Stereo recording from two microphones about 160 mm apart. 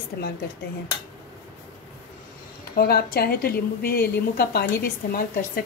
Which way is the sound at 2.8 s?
75° left (ahead or behind).